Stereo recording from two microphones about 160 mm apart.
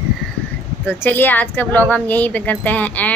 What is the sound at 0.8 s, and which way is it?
A child's voice, 10° left (ahead or behind).